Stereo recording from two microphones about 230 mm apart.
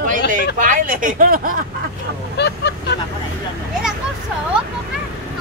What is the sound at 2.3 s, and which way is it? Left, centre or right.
Speech, left.